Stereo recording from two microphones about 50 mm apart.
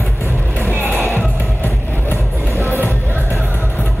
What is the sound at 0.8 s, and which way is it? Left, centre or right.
Music, right.